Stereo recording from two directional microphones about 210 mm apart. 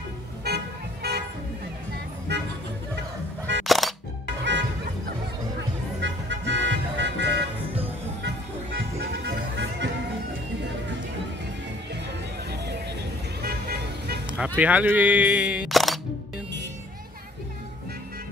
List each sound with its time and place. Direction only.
0.5 s vehicle: 50° right (ahead or behind)
2.3 s music: 55° right (ahead or behind)
3.6 s music: centre (ahead or behind)
5.9 s music: 60° right (ahead or behind)
8.7 s music: 55° right (ahead or behind)
13.4 s vehicle: 45° right (ahead or behind)
14.2 s music: 5° right (ahead or behind)
14.6 s speech: 5° right (ahead or behind)